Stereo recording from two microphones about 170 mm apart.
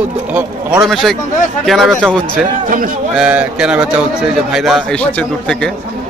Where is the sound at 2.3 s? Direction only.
55° right (ahead or behind).